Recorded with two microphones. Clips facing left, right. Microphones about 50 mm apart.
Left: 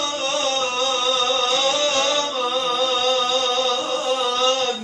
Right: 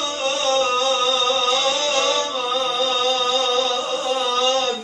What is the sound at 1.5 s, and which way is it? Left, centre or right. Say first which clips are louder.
Music: even; centre.